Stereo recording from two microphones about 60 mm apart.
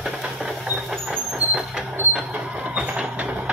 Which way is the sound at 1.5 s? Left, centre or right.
Centre.